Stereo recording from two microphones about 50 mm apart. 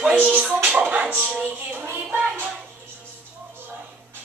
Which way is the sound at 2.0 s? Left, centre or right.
Right.